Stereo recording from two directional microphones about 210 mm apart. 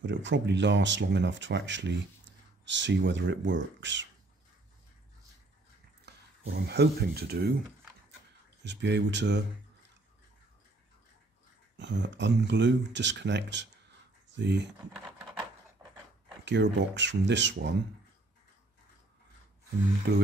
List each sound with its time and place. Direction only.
0.0 s speech: 60° right (ahead or behind)
6.0 s speech: 50° right (ahead or behind)
8.6 s speech: 55° right (ahead or behind)
11.8 s speech: 55° right (ahead or behind)
16.4 s speech: 60° right (ahead or behind)
20.1 s speech: 55° right (ahead or behind)